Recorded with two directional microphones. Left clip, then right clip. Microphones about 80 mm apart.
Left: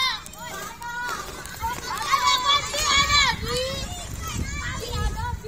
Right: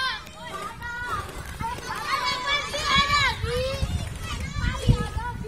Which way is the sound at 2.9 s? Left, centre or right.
Left.